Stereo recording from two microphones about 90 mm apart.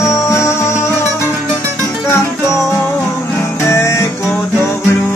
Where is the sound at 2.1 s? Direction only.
35° left (ahead or behind).